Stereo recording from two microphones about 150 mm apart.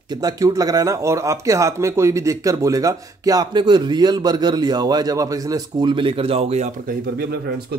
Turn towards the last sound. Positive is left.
turn(degrees=-90)